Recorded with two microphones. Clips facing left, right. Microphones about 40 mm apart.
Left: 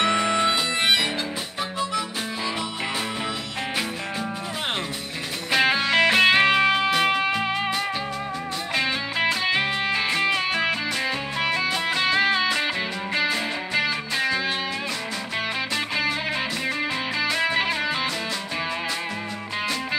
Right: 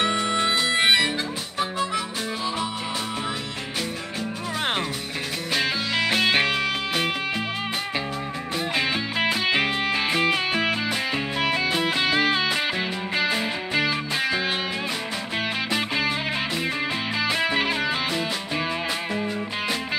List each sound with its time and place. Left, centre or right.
0.1 s music: left
5.5 s music: left
8.7 s music: centre
15.7 s music: centre
17.2 s music: centre